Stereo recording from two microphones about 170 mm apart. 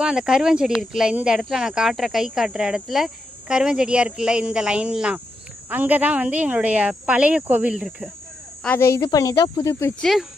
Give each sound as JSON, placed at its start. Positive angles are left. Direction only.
{"t": 0.0, "sound": "speech", "side_deg": -5}
{"t": 9.0, "sound": "speech", "side_deg": 20}
{"t": 9.9, "sound": "speech", "side_deg": 0}